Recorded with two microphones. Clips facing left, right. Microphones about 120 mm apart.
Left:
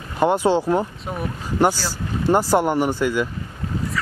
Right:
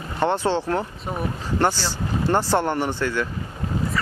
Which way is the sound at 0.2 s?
10° left (ahead or behind).